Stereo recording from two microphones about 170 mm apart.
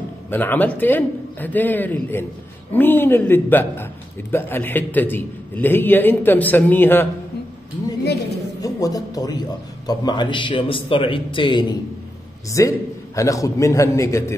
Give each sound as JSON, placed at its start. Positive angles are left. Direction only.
{"t": 0.3, "sound": "a man's voice", "side_deg": 10}
{"t": 8.5, "sound": "a man's voice", "side_deg": 20}